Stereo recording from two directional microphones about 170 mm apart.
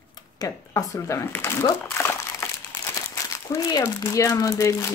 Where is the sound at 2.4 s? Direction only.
15° left (ahead or behind).